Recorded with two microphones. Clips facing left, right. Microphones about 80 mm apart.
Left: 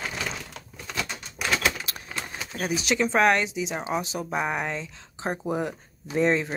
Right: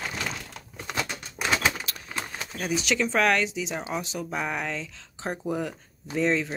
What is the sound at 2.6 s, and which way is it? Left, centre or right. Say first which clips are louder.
Speech: left 1 dB; centre.